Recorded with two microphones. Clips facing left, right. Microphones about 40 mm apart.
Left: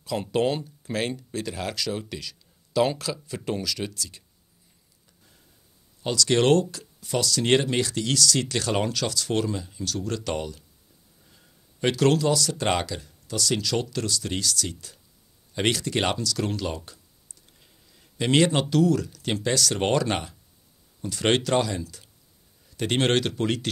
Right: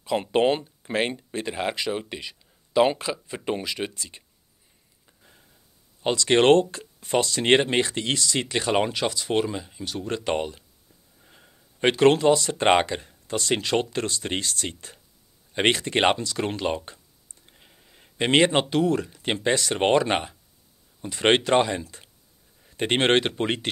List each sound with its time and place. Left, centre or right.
0.0 s speech: right
6.0 s speech: right